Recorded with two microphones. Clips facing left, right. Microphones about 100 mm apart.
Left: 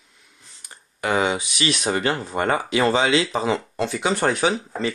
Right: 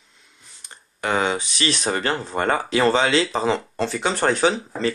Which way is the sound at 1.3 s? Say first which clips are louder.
Even; 35° right (ahead or behind).